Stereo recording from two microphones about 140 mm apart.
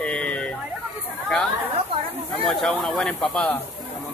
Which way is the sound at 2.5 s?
5° left (ahead or behind).